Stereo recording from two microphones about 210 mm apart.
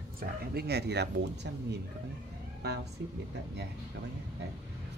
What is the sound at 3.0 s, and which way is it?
Speech, 55° right (ahead or behind).